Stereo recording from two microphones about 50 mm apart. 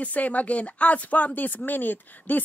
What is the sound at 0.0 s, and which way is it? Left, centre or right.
Speech, left.